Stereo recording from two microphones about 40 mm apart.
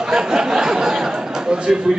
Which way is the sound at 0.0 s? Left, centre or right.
Centre.